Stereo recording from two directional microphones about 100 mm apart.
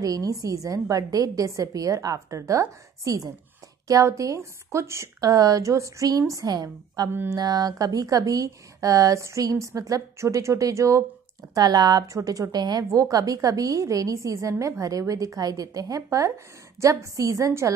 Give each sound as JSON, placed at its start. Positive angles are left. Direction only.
{"t": 0.0, "sound": "a woman's voice", "side_deg": -35}